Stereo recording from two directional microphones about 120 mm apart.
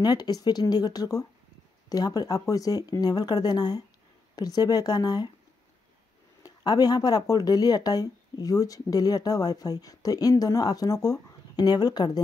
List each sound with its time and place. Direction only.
0.0 s speech: 35° left (ahead or behind)
6.4 s speech: 35° left (ahead or behind)